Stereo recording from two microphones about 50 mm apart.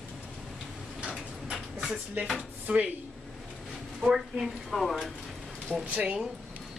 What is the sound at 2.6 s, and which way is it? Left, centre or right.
Speech, right.